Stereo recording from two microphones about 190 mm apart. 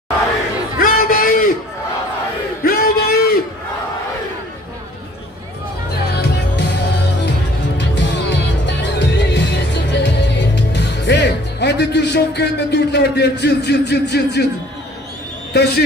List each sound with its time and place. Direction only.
0.7 s a sound: 45° left (ahead or behind)
2.6 s music: 50° left (ahead or behind)
6.1 s music: 60° left (ahead or behind)
7.7 s music: 65° left (ahead or behind)
15.5 s speech: 60° left (ahead or behind)